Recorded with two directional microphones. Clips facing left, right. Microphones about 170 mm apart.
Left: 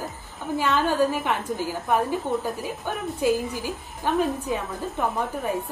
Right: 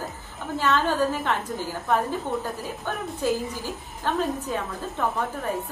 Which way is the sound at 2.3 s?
Centre (ahead or behind).